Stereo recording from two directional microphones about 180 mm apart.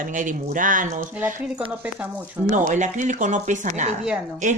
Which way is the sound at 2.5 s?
45° right (ahead or behind).